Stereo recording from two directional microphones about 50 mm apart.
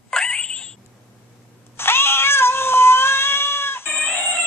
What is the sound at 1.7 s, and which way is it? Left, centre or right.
Cat, left.